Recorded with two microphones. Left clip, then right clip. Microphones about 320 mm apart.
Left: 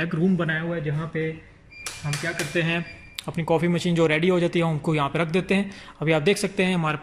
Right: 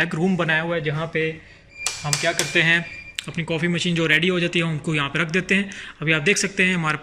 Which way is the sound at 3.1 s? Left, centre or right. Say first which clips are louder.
Left 3 dB; centre.